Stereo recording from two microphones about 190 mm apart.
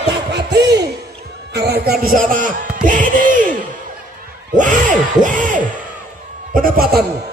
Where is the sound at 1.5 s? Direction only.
55° right (ahead or behind).